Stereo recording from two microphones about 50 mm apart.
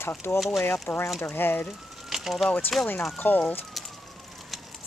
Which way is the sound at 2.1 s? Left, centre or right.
Centre.